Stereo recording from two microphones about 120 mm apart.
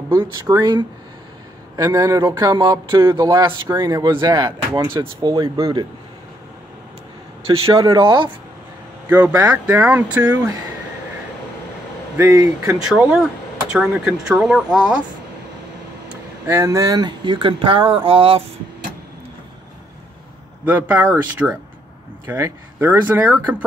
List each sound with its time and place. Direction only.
0.1 s speech: 25° right (ahead or behind)
7.4 s speech: 50° right (ahead or behind)
9.1 s speech: 15° right (ahead or behind)
12.2 s speech: 25° right (ahead or behind)
12.7 s speech: 5° right (ahead or behind)
16.1 s speech: 20° right (ahead or behind); by 18.4 s 50° right (ahead or behind)
20.6 s speech: 15° right (ahead or behind)